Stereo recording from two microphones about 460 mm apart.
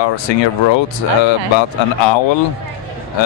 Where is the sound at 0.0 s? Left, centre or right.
Left.